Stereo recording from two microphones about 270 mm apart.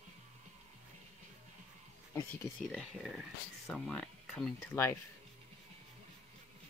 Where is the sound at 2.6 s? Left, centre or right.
Centre.